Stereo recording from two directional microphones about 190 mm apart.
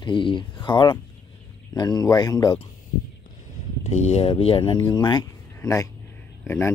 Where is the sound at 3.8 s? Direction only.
35° left (ahead or behind); by 6.7 s 10° left (ahead or behind).